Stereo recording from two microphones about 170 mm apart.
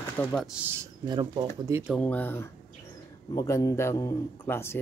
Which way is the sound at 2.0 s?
10° left (ahead or behind).